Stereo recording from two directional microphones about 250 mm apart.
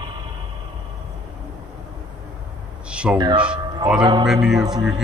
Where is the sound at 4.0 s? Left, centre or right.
Centre.